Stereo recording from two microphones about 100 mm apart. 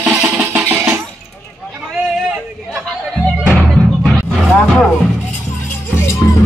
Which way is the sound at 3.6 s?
10° left (ahead or behind).